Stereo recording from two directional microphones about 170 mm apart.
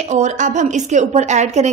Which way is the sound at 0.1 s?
45° right (ahead or behind).